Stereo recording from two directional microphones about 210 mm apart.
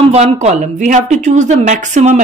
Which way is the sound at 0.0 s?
30° right (ahead or behind).